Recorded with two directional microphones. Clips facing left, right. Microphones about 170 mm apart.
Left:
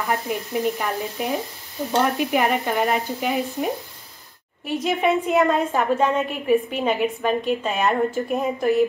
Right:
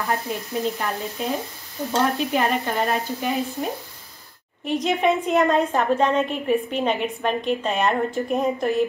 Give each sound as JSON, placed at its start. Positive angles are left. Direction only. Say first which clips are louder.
{"t": 0.1, "sound": "a woman's voice", "louder": "left 3 dB", "side_deg": 15}
{"t": 4.6, "sound": "a woman's voice", "louder": "right 1 dB", "side_deg": 5}